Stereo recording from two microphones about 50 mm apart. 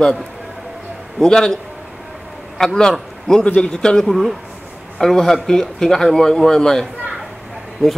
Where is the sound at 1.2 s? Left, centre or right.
Centre.